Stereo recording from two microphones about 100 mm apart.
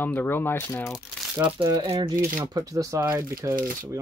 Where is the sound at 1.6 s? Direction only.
60° right (ahead or behind).